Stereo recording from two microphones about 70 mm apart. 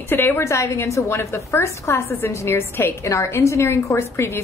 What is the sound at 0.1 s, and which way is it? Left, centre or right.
A woman's voice, left.